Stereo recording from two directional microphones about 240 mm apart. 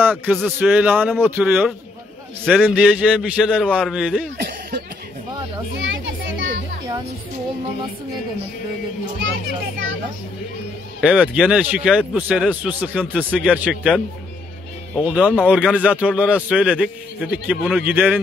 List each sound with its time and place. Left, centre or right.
0.0 s a man's voice: centre
4.4 s cough: right
5.8 s children playing: right
11.0 s a man's voice: centre